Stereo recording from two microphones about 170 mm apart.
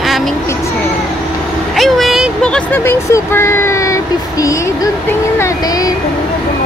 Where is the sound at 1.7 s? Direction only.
Centre (ahead or behind); by 5.9 s 20° left (ahead or behind).